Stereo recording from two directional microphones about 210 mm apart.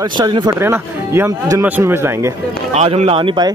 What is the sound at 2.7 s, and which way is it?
Speech, 30° right (ahead or behind).